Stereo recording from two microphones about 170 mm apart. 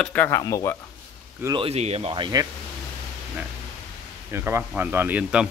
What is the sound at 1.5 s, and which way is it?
Speech, 35° right (ahead or behind).